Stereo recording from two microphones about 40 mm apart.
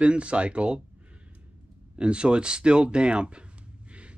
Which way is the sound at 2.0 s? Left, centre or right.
Right.